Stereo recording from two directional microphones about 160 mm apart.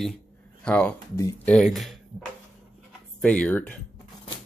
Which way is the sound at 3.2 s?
10° left (ahead or behind).